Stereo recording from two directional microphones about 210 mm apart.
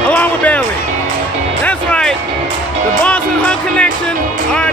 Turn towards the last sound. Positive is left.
turn(degrees=5)  # may be behind; listen again after turning